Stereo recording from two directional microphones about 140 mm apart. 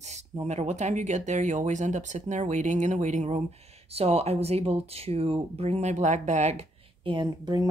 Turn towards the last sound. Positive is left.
turn(degrees=-35)  # may be behind; listen again after turning